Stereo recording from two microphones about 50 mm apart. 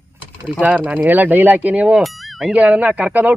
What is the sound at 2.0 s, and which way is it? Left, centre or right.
Speech, centre.